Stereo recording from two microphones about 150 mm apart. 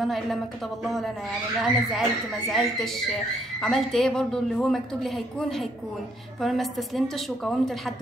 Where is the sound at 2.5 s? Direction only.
Centre (ahead or behind).